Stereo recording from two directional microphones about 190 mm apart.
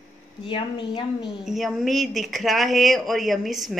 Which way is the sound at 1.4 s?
Centre (ahead or behind).